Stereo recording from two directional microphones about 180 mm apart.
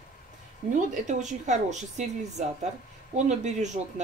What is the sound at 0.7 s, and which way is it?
Speech, 45° right (ahead or behind).